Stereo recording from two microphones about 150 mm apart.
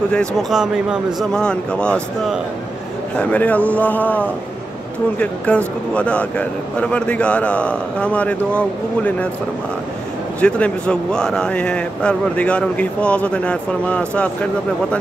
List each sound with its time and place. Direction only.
0.1 s speech: 5° left (ahead or behind)
1.4 s speech: 5° left (ahead or behind)
3.2 s speech: 10° left (ahead or behind)
10.4 s speech: 5° left (ahead or behind)